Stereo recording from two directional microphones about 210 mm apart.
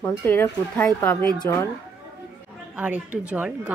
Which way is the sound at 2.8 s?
5° right (ahead or behind).